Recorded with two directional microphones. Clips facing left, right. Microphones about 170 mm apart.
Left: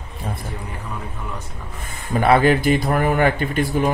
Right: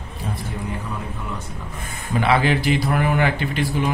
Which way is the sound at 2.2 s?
45° left (ahead or behind).